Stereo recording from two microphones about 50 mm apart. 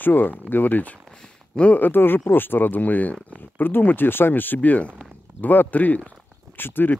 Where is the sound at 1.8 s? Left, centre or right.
Left.